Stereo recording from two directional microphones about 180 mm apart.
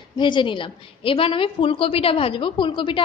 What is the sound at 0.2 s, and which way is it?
A woman's voice, 25° left (ahead or behind).